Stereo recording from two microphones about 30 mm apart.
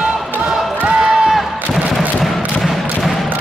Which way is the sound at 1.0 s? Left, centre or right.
Centre.